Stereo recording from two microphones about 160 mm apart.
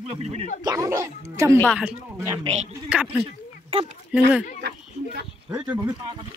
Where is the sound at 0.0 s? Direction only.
40° right (ahead or behind).